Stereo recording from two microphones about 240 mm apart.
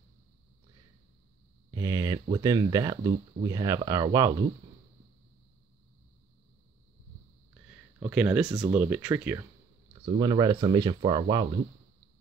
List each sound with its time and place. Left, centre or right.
1.7 s speech: centre
8.0 s speech: centre
8.5 s speech: centre
8.7 s speech: centre